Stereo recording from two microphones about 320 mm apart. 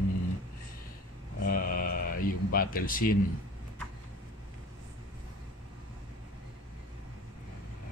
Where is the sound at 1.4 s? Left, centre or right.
Left.